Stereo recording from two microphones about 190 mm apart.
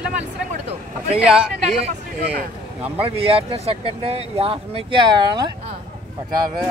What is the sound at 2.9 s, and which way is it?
Speech, 30° right (ahead or behind).